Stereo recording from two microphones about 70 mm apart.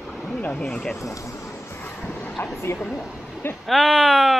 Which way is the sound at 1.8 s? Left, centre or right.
Left.